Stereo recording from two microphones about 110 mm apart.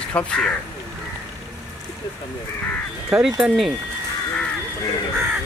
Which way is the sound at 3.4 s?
5° right (ahead or behind).